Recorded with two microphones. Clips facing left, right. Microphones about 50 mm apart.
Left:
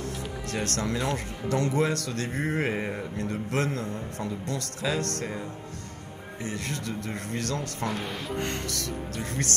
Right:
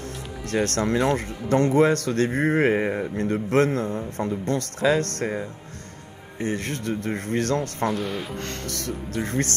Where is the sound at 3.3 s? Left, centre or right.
Right.